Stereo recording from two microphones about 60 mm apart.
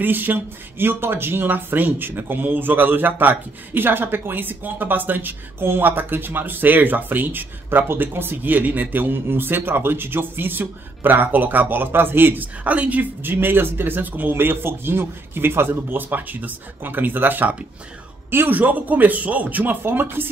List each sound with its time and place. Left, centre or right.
0.0 s speech: right
13.3 s speech: right